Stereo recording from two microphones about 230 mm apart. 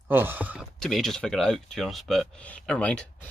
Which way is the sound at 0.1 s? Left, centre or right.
Centre.